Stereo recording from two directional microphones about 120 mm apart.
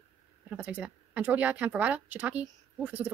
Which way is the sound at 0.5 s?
10° right (ahead or behind).